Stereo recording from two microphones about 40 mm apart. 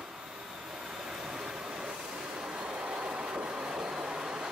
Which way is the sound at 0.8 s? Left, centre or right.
Centre.